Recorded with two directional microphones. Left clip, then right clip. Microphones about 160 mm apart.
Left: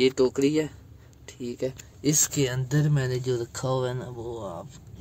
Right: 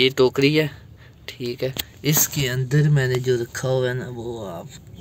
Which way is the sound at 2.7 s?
20° left (ahead or behind).